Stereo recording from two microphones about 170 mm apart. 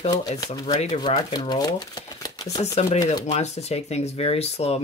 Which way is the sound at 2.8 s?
40° left (ahead or behind).